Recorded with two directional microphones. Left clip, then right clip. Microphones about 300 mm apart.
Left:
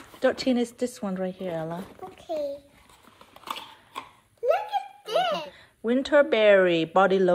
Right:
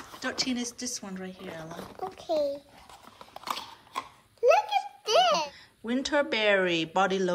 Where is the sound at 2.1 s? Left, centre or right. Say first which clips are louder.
Right 2 dB; right.